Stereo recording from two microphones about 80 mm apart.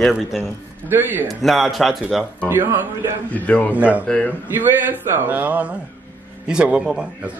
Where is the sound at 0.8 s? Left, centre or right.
Right.